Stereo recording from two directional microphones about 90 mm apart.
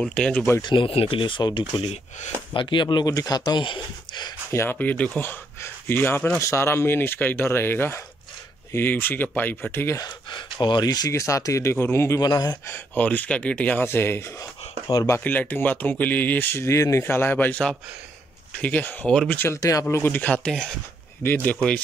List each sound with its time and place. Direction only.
0.0 s speech: 10° left (ahead or behind)
0.6 s speech: 65° left (ahead or behind)
4.6 s speech: 15° left (ahead or behind)
10.3 s speech: 60° left (ahead or behind)
11.1 s speech: 35° left (ahead or behind)
12.2 s speech: 45° left (ahead or behind)
12.6 s speech: 20° left (ahead or behind)
13.8 s speech: 25° left (ahead or behind)
15.2 s speech: 20° left (ahead or behind)
19.3 s speech: 25° left (ahead or behind)
19.6 s speech: 35° left (ahead or behind)
20.2 s speech: 15° left (ahead or behind)
21.2 s speech: 20° left (ahead or behind)